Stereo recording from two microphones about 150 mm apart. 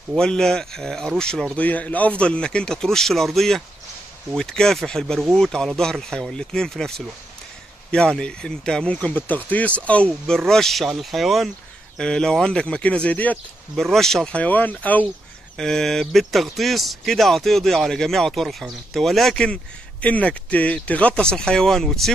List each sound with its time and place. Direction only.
0.1 s speech: 5° left (ahead or behind)
7.9 s speech: 5° left (ahead or behind)